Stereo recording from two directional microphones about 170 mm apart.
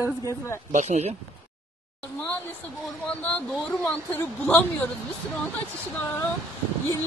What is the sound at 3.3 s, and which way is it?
Speech, 5° left (ahead or behind).